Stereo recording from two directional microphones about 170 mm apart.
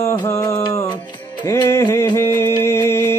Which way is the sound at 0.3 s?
20° left (ahead or behind).